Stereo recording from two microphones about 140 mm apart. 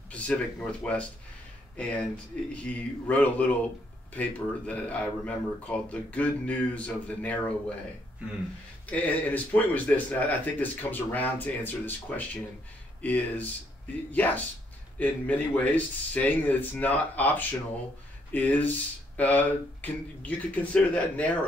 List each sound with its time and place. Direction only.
0.1 s speech: 10° left (ahead or behind)
2.5 s speech: 10° left (ahead or behind)
8.9 s speech: 10° left (ahead or behind)